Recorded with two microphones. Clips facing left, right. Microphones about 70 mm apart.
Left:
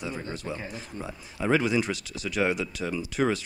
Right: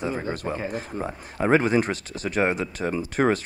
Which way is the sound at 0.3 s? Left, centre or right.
Right.